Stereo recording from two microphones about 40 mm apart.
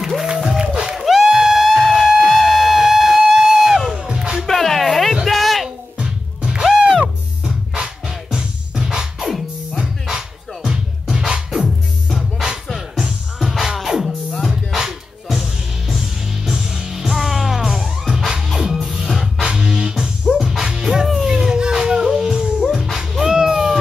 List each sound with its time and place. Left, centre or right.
0.3 s music: centre
4.1 s music: right
4.5 s music: centre
5.2 s a sound: centre
5.9 s music: right
7.7 s music: right
9.3 s music: centre
22.9 s a sound: centre